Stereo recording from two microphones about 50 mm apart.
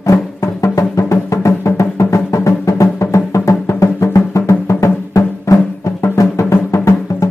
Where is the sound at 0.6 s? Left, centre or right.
Left.